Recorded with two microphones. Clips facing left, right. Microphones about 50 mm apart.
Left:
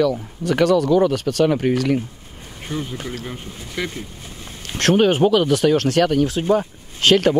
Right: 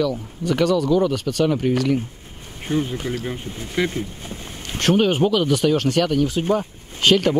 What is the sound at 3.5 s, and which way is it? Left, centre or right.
Speech, right.